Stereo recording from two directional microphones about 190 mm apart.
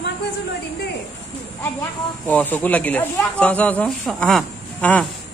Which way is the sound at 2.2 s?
10° left (ahead or behind).